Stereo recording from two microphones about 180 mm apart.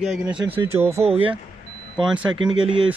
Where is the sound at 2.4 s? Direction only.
5° right (ahead or behind).